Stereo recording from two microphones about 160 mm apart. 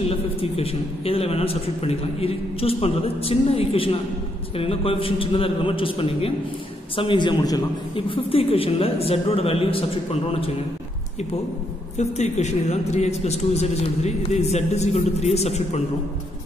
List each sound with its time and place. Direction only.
0.1 s a man's voice: 40° left (ahead or behind)
12.0 s a man's voice: 45° left (ahead or behind)